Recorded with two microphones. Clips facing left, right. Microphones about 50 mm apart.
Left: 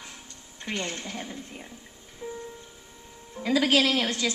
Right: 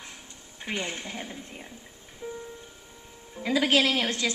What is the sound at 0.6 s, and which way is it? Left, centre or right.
Speech, centre.